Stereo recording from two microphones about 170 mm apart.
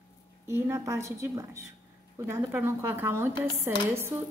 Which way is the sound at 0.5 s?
15° right (ahead or behind).